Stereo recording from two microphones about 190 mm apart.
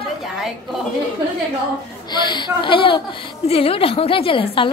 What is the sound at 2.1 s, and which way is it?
A woman's voice, 25° left (ahead or behind).